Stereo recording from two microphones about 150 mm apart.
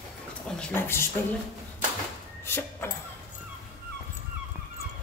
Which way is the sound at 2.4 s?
15° left (ahead or behind).